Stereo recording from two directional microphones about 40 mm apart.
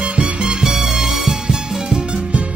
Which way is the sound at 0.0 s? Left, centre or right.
Right.